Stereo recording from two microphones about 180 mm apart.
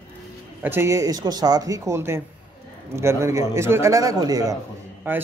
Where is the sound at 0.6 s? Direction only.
10° right (ahead or behind).